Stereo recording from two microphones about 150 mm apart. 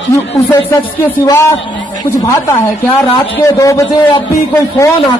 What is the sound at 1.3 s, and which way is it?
A man's voice, 15° left (ahead or behind).